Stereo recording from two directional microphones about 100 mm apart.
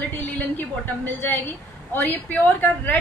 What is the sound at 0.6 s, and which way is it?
A man's voice, 20° left (ahead or behind).